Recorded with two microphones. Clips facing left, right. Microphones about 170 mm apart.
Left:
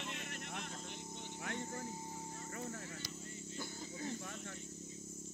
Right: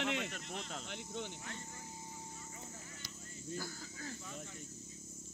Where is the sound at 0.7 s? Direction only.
85° right.